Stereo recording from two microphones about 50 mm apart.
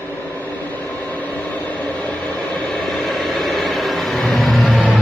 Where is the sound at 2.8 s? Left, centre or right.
Centre.